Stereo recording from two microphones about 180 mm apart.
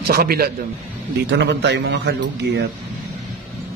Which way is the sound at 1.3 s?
70° right (ahead or behind).